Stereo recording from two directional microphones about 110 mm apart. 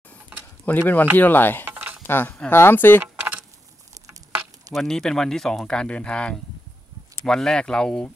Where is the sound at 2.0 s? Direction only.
20° left (ahead or behind).